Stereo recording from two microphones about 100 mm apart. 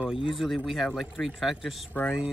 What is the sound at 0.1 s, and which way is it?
Speech, centre (ahead or behind).